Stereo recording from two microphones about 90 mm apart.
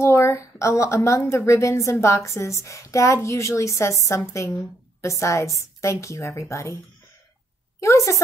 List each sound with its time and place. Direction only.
0.0 s a woman's voice: 30° left (ahead or behind)
7.8 s a woman's voice: 35° left (ahead or behind)